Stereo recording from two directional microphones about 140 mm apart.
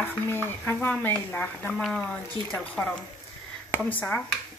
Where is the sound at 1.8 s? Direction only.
5° left (ahead or behind).